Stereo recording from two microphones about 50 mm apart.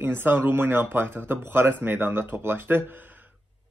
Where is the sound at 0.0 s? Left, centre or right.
Right.